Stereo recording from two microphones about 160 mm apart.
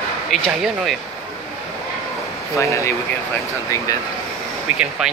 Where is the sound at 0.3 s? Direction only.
Centre (ahead or behind).